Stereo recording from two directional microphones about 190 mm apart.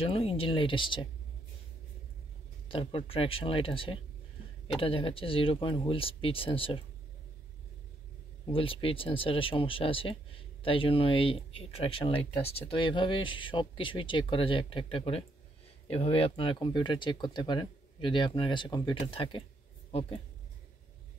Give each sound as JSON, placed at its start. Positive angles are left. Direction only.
{"t": 0.0, "sound": "speech", "side_deg": 30}
{"t": 2.7, "sound": "speech", "side_deg": 30}
{"t": 8.5, "sound": "speech", "side_deg": 30}